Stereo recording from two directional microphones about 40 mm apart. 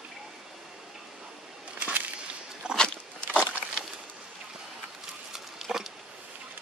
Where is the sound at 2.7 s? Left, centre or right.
Left.